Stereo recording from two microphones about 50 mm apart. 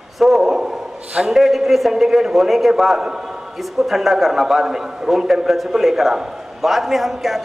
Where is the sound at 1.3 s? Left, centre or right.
Centre.